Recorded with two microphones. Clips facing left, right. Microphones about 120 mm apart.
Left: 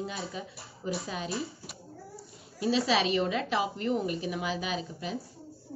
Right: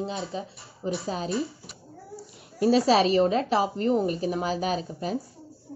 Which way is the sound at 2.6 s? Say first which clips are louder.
Right 7 dB; 45° right (ahead or behind).